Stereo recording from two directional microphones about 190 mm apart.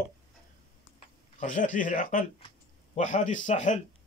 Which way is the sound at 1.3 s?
40° left (ahead or behind).